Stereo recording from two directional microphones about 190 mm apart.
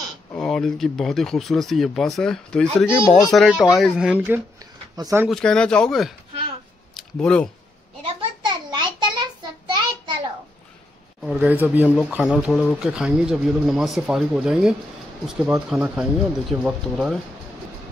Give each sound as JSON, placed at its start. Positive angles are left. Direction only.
{"t": 0.3, "sound": "speech", "side_deg": 5}
{"t": 4.9, "sound": "speech", "side_deg": -20}
{"t": 5.3, "sound": "speech", "side_deg": 5}
{"t": 8.0, "sound": "a sound", "side_deg": -25}
{"t": 11.3, "sound": "speech", "side_deg": -10}